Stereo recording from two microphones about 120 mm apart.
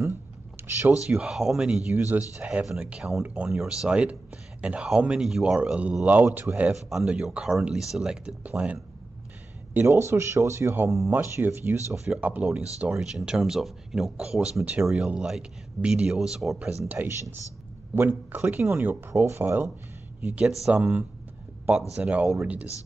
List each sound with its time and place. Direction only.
0.6 s speech: 20° right (ahead or behind)
1.0 s speech: 5° right (ahead or behind)
9.8 s speech: 20° right (ahead or behind)